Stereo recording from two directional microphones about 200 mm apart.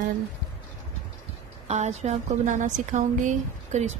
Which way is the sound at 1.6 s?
35° right (ahead or behind).